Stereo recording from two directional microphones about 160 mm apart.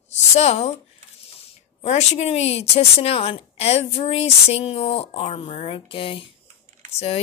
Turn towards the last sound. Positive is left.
turn(degrees=40)  # may be behind; listen again after turning